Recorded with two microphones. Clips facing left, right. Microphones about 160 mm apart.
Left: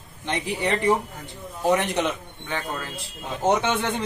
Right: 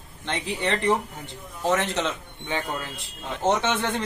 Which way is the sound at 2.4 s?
20° right (ahead or behind).